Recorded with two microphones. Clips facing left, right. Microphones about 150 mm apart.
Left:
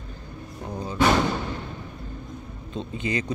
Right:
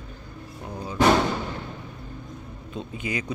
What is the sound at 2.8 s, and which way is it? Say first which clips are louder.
Speech: left 3 dB; 10° right (ahead or behind).